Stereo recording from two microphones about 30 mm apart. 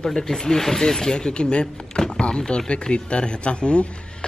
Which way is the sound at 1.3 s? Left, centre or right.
Left.